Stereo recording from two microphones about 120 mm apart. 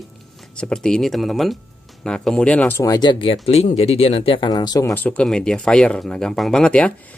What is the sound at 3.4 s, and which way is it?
Speech, 60° left (ahead or behind).